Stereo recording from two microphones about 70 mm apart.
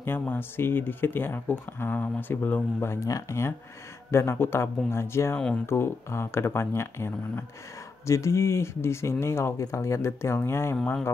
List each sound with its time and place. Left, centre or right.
0.2 s speech: left
3.1 s speech: left
4.1 s speech: left